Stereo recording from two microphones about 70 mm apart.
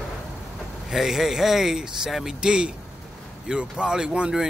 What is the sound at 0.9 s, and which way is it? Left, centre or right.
Speech, centre.